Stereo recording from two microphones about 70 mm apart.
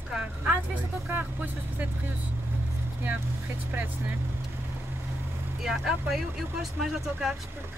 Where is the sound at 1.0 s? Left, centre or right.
Right.